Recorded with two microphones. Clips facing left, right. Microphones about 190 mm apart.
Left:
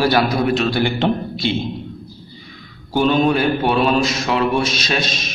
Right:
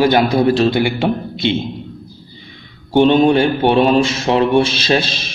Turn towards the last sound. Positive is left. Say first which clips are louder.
# right 5 dB
turn(degrees=-30)  # may be behind; listen again after turning